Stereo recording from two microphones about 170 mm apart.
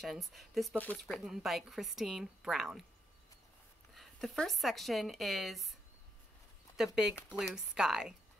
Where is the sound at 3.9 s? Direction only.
Centre (ahead or behind).